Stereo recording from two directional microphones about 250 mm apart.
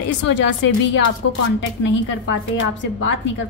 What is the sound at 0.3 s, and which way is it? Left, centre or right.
Speech, left.